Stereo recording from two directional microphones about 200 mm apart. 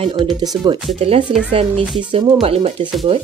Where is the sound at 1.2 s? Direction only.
5° right (ahead or behind).